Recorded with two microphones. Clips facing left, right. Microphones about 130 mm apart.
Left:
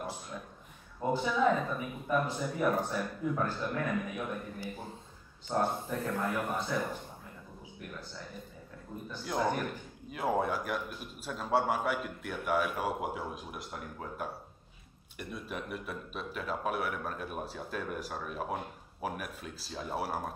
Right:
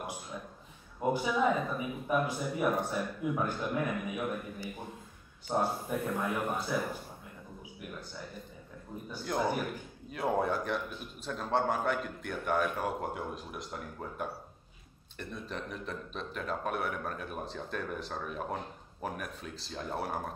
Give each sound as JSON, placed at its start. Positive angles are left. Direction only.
{"t": 1.1, "sound": "speech", "side_deg": -10}
{"t": 6.3, "sound": "a man's voice", "side_deg": 0}
{"t": 9.2, "sound": "speech", "side_deg": -5}
{"t": 10.1, "sound": "a man's voice", "side_deg": 5}